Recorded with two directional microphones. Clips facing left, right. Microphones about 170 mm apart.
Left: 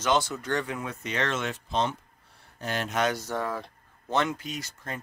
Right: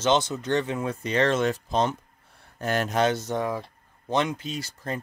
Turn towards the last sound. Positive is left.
turn(degrees=-35)  # may be behind; listen again after turning